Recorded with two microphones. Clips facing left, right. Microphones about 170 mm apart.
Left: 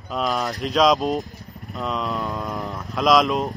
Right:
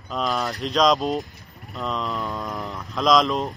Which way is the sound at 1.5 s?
Centre (ahead or behind).